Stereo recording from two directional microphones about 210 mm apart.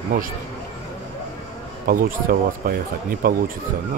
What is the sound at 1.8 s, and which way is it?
Speech, 45° right (ahead or behind).